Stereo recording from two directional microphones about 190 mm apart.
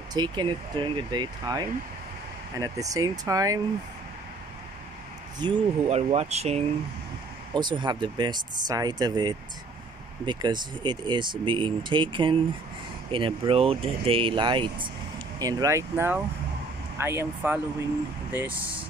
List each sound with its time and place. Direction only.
0.1 s speech: 25° right (ahead or behind)
5.4 s speech: 30° right (ahead or behind)
7.5 s speech: 25° right (ahead or behind)